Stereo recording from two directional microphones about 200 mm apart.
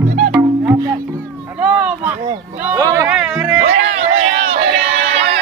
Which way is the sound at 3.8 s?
35° right (ahead or behind).